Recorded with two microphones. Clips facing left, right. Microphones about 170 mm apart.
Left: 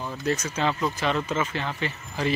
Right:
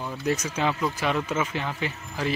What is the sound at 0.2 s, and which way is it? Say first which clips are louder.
Speech: even; 10° right (ahead or behind).